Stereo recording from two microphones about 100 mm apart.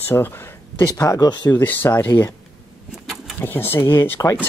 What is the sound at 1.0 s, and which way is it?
Speech, 35° left (ahead or behind).